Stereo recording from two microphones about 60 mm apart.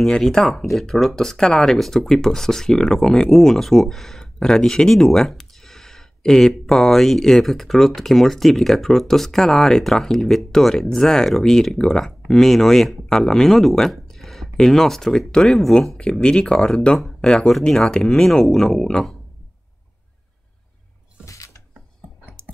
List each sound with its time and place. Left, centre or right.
0.1 s speech: centre
21.3 s a sound: left
22.4 s typing: centre